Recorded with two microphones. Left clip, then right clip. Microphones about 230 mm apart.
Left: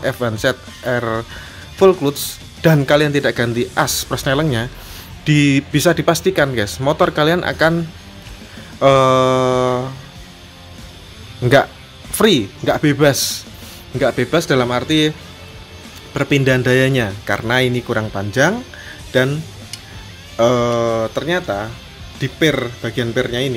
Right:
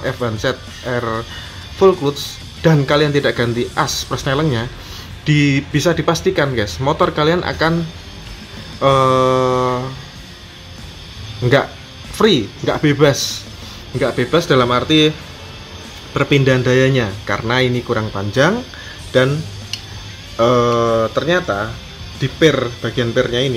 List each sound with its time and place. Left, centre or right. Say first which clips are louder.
0.0 s speech: left 2 dB; left
8.7 s speech: left 1 dB; left
11.4 s speech: left 2 dB; left
20.3 s speech: right 1 dB; left